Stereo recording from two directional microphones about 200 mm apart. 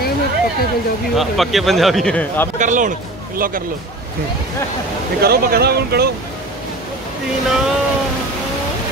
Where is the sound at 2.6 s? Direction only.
40° right (ahead or behind).